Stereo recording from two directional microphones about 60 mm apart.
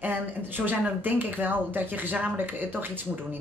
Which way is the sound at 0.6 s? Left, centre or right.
Right.